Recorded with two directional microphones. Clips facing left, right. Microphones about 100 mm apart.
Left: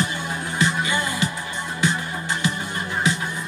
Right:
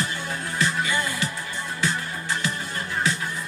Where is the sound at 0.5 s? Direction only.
20° left (ahead or behind).